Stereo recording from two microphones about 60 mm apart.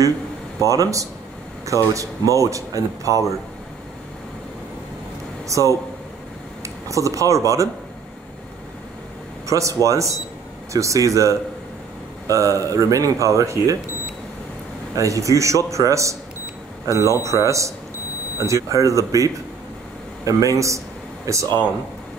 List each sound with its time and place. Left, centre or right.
0.6 s speech: right
5.5 s speech: right
9.5 s speech: right
15.0 s speech: right